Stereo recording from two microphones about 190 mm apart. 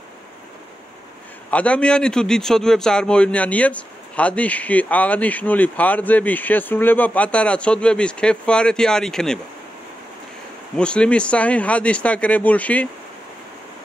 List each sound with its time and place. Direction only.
1.5 s a man's voice: 5° left (ahead or behind)
10.8 s a man's voice: 5° left (ahead or behind)